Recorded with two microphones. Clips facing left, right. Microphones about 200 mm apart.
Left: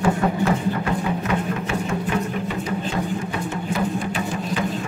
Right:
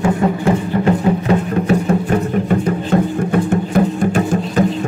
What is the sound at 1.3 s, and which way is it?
Music, 40° right (ahead or behind).